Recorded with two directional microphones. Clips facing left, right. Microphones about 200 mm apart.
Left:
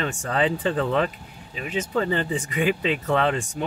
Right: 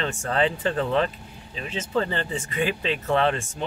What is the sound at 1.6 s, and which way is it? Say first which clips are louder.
Speech: left 2 dB; 15° left (ahead or behind).